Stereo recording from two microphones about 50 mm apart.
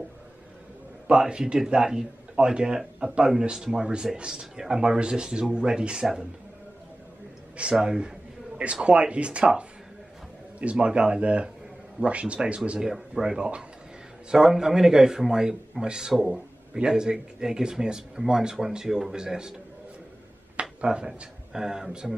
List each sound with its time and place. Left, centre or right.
1.0 s a man's voice: centre
7.8 s a man's voice: centre
20.8 s a man's voice: centre